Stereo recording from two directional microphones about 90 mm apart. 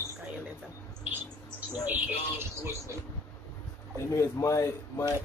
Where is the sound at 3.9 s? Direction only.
35° left (ahead or behind).